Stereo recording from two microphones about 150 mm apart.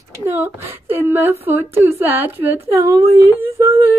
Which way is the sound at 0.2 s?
15° right (ahead or behind).